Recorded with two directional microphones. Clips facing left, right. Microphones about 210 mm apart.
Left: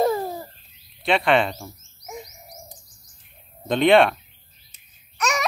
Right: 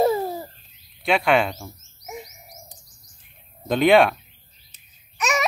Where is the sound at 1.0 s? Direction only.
Centre (ahead or behind).